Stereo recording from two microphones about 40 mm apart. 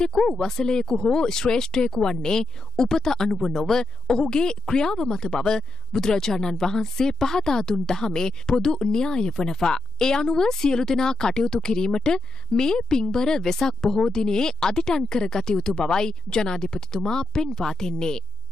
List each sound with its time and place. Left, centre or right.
0.0 s speech: centre